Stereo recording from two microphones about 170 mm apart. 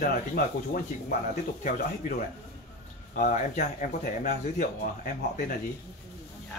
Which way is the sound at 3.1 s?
50° left (ahead or behind).